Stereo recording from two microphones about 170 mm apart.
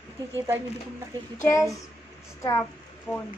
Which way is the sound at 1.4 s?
20° left (ahead or behind).